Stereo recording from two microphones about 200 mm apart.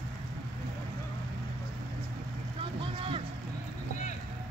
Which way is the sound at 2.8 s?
25° right (ahead or behind).